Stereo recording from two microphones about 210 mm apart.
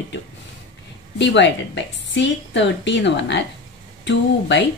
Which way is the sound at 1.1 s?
60° left (ahead or behind).